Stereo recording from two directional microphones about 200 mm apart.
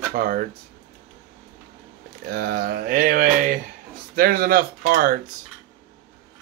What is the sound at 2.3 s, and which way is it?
Speech, 50° right (ahead or behind).